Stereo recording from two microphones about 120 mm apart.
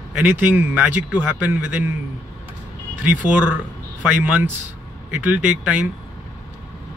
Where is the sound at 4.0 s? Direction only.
10° right (ahead or behind).